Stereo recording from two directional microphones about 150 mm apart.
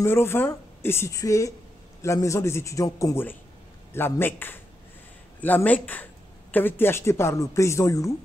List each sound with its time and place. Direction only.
0.0 s a man's voice: 15° left (ahead or behind)